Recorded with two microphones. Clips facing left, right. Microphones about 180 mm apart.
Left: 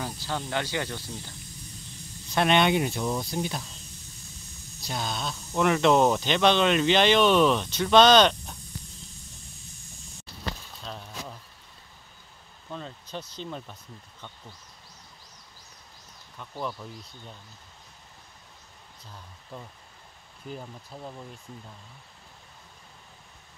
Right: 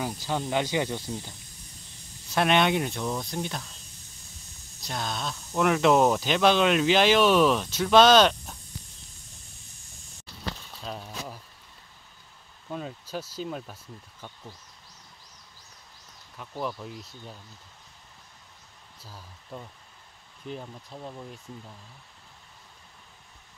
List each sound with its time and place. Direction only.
0.0 s speech: 15° right (ahead or behind)
2.3 s speech: centre (ahead or behind)
4.8 s speech: centre (ahead or behind)
10.8 s a sound: 5° right (ahead or behind)
12.6 s speech: 10° right (ahead or behind)
16.3 s speech: 5° right (ahead or behind)
19.0 s speech: 5° right (ahead or behind)